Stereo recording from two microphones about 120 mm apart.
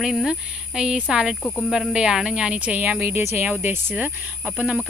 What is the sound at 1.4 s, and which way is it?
Speech, 15° left (ahead or behind).